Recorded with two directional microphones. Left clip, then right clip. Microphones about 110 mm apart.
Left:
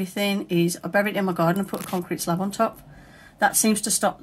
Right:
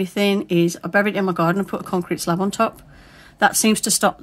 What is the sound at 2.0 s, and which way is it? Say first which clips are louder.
Speech: right 5 dB; 30° right (ahead or behind).